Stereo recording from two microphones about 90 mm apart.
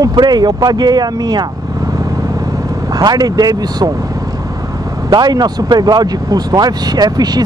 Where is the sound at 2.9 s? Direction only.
45° right (ahead or behind).